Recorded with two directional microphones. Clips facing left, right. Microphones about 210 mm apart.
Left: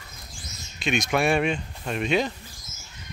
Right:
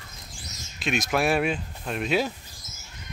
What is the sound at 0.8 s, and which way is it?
Speech, centre (ahead or behind).